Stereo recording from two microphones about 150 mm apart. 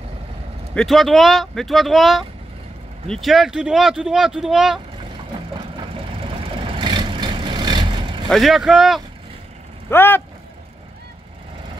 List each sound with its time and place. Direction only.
0.7 s speech: centre (ahead or behind)
5.5 s vehicle: 35° right (ahead or behind)
8.3 s speech: centre (ahead or behind)
9.8 s speech: 15° left (ahead or behind)